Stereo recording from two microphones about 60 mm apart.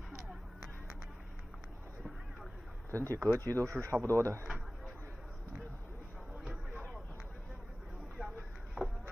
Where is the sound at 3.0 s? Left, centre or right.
Right.